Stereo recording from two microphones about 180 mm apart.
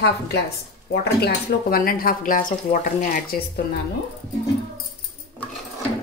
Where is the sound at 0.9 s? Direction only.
55° left (ahead or behind).